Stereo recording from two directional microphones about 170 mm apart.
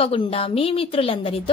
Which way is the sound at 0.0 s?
35° left (ahead or behind).